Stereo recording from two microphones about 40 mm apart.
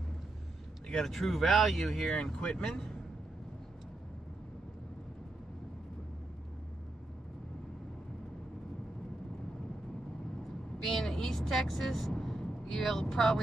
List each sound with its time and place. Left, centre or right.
0.9 s speech: centre
2.1 s speech: left
10.8 s vehicle: centre